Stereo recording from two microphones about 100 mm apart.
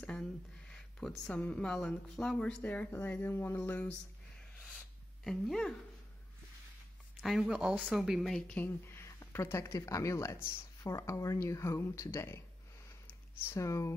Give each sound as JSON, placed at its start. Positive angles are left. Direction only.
{"t": 0.9, "sound": "speech", "side_deg": 10}
{"t": 5.2, "sound": "speech", "side_deg": 0}
{"t": 7.2, "sound": "speech", "side_deg": 0}
{"t": 8.5, "sound": "speech", "side_deg": 20}
{"t": 13.0, "sound": "a sound", "side_deg": 25}